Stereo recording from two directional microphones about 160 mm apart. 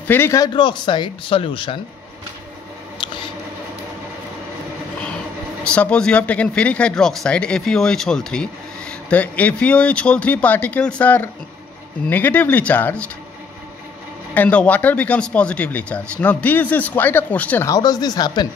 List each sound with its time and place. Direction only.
0.1 s speech: 15° left (ahead or behind)
0.6 s speech: 30° left (ahead or behind)
3.0 s a sound: 30° left (ahead or behind)
5.6 s speech: 5° left (ahead or behind)
14.3 s speech: 10° left (ahead or behind)
17.6 s speech: 25° left (ahead or behind)